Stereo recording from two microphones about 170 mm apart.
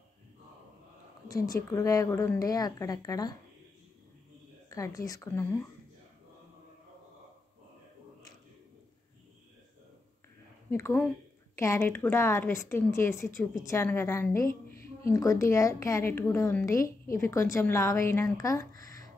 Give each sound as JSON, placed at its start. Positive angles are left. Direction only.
{"t": 1.3, "sound": "a woman's voice", "side_deg": 20}
{"t": 4.6, "sound": "a woman's voice", "side_deg": 20}
{"t": 11.5, "sound": "a woman's voice", "side_deg": 15}
{"t": 18.8, "sound": "a sound", "side_deg": 20}